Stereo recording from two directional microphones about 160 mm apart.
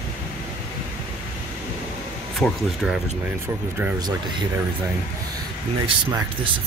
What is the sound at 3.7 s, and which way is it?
Speech, 15° right (ahead or behind).